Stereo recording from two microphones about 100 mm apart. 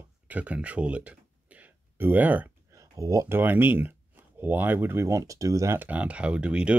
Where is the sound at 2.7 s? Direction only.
35° right (ahead or behind).